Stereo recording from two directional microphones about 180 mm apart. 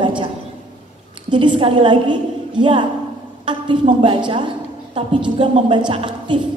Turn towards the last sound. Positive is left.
turn(degrees=-30)  # may be behind; listen again after turning